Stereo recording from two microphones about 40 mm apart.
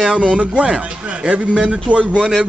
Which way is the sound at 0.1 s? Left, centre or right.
Centre.